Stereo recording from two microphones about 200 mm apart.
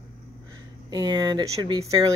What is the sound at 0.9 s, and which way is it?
Speech, 20° right (ahead or behind).